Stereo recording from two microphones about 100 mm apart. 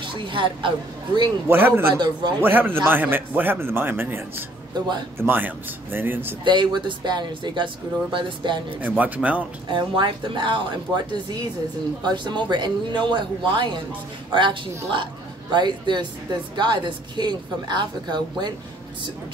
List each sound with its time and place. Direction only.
0.0 s a woman's voice: 55° right (ahead or behind)
1.5 s a man's voice: 20° right (ahead or behind)
6.4 s a woman's voice: 50° right (ahead or behind)
8.8 s speech: 15° right (ahead or behind)
9.7 s a woman's voice: 50° right (ahead or behind)